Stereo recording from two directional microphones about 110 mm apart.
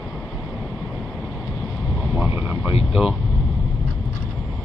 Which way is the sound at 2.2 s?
15° right (ahead or behind).